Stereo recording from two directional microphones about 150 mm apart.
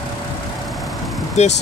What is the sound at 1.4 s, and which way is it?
Speech, 45° left (ahead or behind).